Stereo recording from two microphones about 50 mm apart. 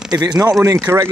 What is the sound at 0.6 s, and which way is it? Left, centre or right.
Speech, right.